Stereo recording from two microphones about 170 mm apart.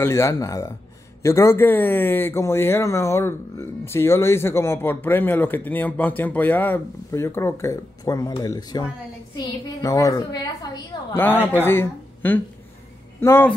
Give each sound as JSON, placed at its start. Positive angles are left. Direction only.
{"t": 0.0, "sound": "a woman's voice", "side_deg": 15}
{"t": 11.5, "sound": "speech", "side_deg": 15}